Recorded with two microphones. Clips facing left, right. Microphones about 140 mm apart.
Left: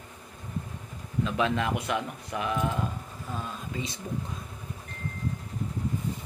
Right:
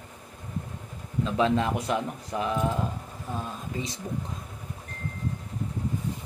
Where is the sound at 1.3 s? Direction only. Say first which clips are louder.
Right 3 dB; 30° right (ahead or behind).